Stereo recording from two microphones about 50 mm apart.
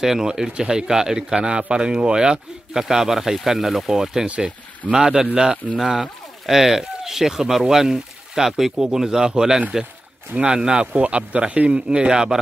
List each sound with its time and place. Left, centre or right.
0.0 s a man's voice: centre